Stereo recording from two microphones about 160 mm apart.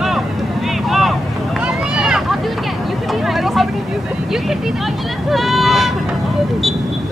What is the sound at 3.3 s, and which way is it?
Vehicle, centre (ahead or behind).